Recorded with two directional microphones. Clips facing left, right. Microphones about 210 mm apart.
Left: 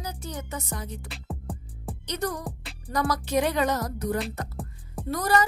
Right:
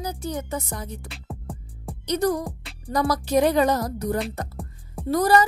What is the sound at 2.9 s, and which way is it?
Music, 35° right (ahead or behind).